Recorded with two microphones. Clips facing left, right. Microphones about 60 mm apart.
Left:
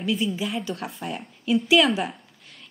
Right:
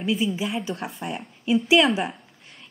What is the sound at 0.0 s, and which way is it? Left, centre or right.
A woman's voice, centre.